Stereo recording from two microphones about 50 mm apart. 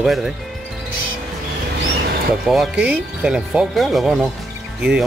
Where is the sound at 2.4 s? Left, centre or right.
Centre.